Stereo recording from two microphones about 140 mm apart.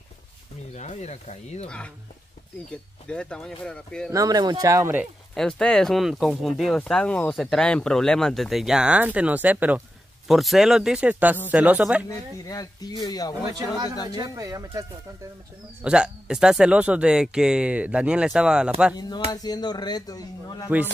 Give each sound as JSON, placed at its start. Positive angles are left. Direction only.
{"t": 0.7, "sound": "speech", "side_deg": 55}
{"t": 2.7, "sound": "speech", "side_deg": 5}
{"t": 4.1, "sound": "speech", "side_deg": -25}
{"t": 5.3, "sound": "speech", "side_deg": 5}
{"t": 10.2, "sound": "speech", "side_deg": 0}
{"t": 12.4, "sound": "speech", "side_deg": 25}
{"t": 13.5, "sound": "speech", "side_deg": -30}
{"t": 15.8, "sound": "speech", "side_deg": -5}
{"t": 18.9, "sound": "speech", "side_deg": 30}